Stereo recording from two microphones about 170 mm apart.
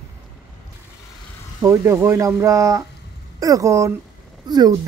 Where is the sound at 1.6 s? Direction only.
15° right (ahead or behind).